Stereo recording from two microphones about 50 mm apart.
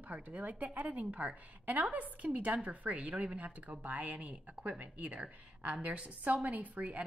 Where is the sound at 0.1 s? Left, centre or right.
Right.